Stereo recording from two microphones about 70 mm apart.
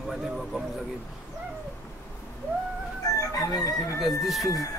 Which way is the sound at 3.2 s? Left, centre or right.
Left.